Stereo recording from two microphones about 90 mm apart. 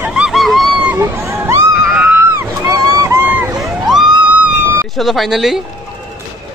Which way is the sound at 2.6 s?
40° right (ahead or behind).